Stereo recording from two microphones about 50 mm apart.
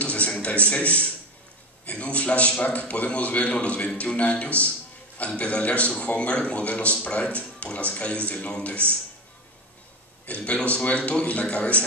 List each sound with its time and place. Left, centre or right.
0.0 s a sound: left
0.7 s a man's voice: left
10.2 s a man's voice: left